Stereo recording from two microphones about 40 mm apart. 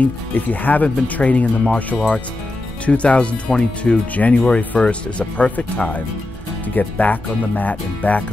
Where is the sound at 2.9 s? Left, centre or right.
Left.